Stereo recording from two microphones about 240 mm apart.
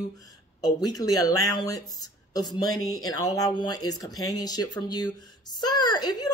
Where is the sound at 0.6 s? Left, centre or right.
Centre.